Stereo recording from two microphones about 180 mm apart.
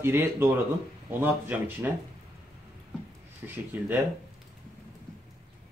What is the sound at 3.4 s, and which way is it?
Speech, 10° right (ahead or behind).